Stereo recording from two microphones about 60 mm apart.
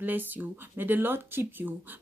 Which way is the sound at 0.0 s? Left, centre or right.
Right.